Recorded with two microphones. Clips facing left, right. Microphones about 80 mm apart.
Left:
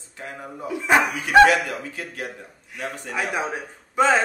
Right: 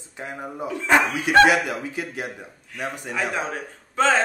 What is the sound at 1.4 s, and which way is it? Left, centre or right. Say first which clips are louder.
Speech: even; centre.